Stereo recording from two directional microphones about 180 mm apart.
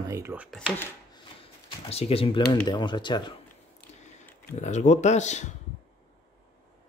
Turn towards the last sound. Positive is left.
turn(degrees=40)  # may be behind; listen again after turning